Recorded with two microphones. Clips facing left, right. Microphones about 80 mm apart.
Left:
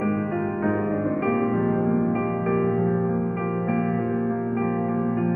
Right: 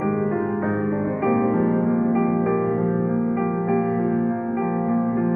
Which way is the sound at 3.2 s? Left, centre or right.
Right.